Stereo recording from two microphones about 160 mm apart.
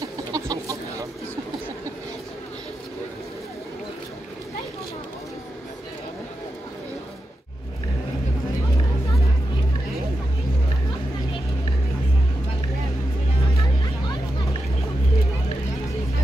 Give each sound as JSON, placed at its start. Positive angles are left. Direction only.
{"t": 0.3, "sound": "chicken", "side_deg": -20}